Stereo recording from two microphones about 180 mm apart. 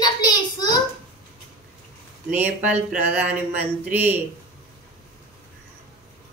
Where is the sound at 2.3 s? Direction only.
10° right (ahead or behind).